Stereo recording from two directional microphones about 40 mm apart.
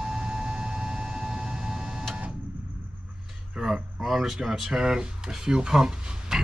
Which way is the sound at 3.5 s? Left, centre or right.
Centre.